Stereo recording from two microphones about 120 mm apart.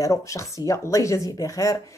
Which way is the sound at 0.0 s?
25° left (ahead or behind).